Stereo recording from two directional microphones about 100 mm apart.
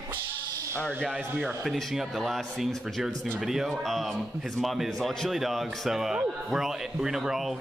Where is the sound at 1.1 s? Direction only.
10° right (ahead or behind).